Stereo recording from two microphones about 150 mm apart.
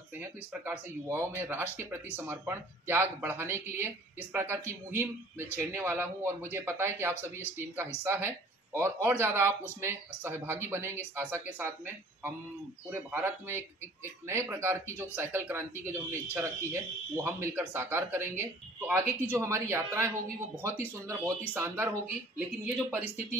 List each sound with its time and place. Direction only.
0.2 s speech: 15° right (ahead or behind)
21.1 s speech: 15° right (ahead or behind)